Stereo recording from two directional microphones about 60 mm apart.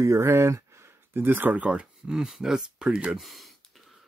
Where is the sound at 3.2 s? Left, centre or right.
Centre.